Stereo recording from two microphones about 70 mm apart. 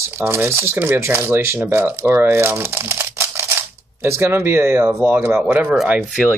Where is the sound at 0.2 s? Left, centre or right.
Right.